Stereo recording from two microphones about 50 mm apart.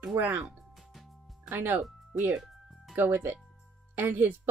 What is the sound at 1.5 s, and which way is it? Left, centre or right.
Speech, right.